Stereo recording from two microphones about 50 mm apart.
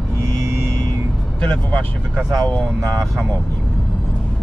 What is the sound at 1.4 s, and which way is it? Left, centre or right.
Speech, left.